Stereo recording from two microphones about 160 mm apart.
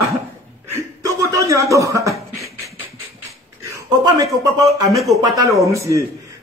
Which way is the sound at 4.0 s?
20° right (ahead or behind).